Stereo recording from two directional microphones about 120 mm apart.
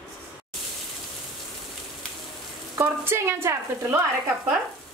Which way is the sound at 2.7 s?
20° right (ahead or behind).